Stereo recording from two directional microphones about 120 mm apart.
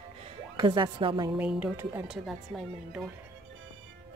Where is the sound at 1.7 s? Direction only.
20° right (ahead or behind).